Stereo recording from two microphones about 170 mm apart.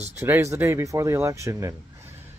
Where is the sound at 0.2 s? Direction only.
15° right (ahead or behind).